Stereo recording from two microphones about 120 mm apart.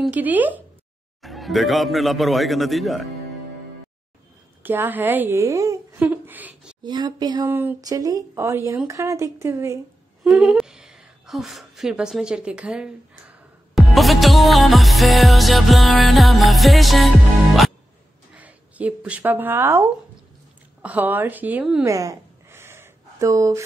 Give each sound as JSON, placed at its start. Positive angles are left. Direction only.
{"t": 0.1, "sound": "speech", "side_deg": -15}
{"t": 1.2, "sound": "a man's voice", "side_deg": 0}
{"t": 4.6, "sound": "a woman's voice", "side_deg": -15}
{"t": 6.0, "sound": "a sound", "side_deg": -15}
{"t": 6.8, "sound": "speech", "side_deg": -35}
{"t": 7.4, "sound": "speech", "side_deg": -20}
{"t": 7.8, "sound": "speech", "side_deg": -30}
{"t": 10.2, "sound": "a woman's voice", "side_deg": -5}
{"t": 18.3, "sound": "speech", "side_deg": -10}
{"t": 21.8, "sound": "a sound", "side_deg": -30}